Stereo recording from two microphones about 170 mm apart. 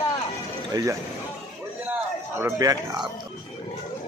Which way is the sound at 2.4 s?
20° right (ahead or behind).